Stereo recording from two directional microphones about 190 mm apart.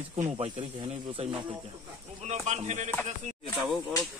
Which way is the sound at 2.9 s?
5° left (ahead or behind).